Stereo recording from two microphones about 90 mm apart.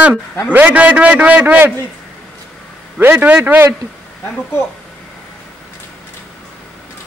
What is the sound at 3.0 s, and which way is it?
Speech, 20° right (ahead or behind).